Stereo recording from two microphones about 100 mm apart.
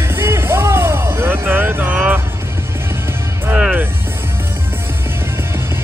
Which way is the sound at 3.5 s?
15° right (ahead or behind).